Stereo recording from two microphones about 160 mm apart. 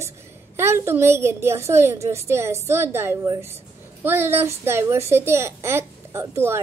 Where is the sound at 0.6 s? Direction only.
15° right (ahead or behind).